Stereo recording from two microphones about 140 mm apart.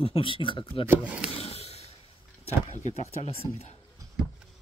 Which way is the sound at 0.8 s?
10° right (ahead or behind).